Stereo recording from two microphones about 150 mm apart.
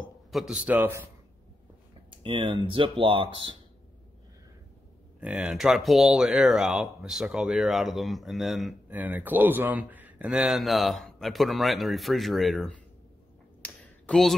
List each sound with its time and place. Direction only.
0.0 s a man's voice: centre (ahead or behind)
2.0 s speech: 35° right (ahead or behind)
5.2 s speech: 10° right (ahead or behind)
8.8 s speech: 10° right (ahead or behind)
13.6 s a sound: 5° left (ahead or behind)